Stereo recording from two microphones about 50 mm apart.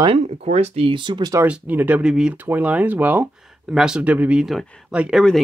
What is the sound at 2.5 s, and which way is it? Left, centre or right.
Speech, right.